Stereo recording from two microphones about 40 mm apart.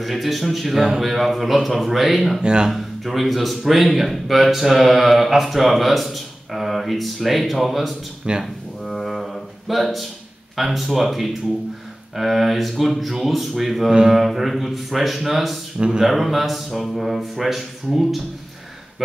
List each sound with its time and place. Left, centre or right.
0.0 s speech: centre
0.7 s a sound: centre
1.1 s speech: centre
2.4 s speech: right
2.7 s speech: centre
8.3 s speech: right
8.8 s music: centre
10.5 s speech: centre